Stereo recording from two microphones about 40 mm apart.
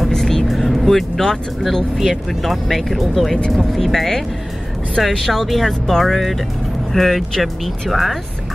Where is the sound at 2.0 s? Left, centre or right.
Centre.